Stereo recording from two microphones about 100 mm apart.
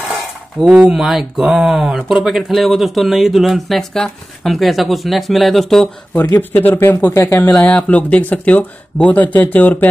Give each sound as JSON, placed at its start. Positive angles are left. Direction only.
{"t": 0.7, "sound": "speech", "side_deg": -10}
{"t": 6.3, "sound": "speech", "side_deg": 15}